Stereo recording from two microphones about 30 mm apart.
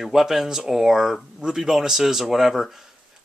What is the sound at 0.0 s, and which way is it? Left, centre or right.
Speech, centre.